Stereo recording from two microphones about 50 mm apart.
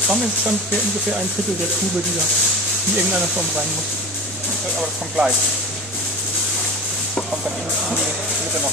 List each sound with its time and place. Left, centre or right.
0.1 s speech: centre
3.0 s speech: centre
4.7 s speech: centre